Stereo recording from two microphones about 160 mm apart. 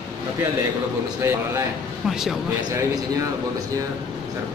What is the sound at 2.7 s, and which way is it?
Speech, 20° right (ahead or behind).